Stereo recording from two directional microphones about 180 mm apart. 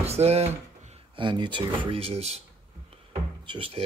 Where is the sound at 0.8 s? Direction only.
35° right (ahead or behind).